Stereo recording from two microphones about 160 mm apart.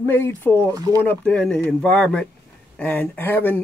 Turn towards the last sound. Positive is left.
turn(degrees=10)  # may be behind; listen again after turning